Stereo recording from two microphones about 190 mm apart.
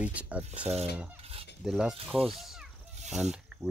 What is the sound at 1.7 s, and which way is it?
Speech, 5° right (ahead or behind).